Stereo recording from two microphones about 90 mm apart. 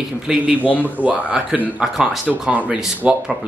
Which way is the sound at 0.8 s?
15° right (ahead or behind).